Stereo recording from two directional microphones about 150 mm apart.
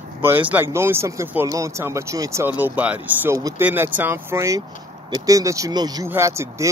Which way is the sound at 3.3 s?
25° right (ahead or behind).